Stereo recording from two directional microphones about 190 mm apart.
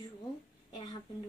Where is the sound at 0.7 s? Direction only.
20° left (ahead or behind).